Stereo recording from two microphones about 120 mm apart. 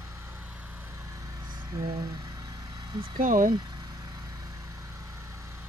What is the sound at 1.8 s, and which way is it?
Vehicle, 35° right (ahead or behind).